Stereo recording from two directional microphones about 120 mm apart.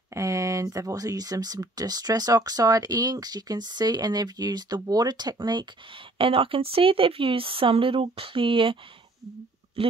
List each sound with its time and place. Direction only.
0.1 s speech: 25° right (ahead or behind)
6.1 s speech: 50° right (ahead or behind)
9.8 s speech: 50° right (ahead or behind)